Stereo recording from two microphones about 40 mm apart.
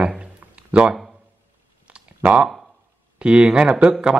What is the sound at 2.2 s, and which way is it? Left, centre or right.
Speech, right.